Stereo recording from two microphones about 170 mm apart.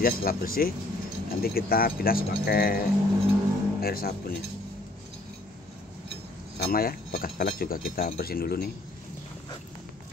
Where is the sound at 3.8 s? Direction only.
65° left (ahead or behind).